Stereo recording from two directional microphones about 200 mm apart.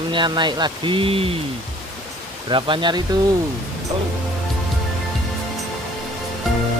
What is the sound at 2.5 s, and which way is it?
Speech, 25° right (ahead or behind).